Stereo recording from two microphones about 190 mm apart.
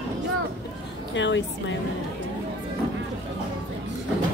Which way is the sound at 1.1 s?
70° left (ahead or behind).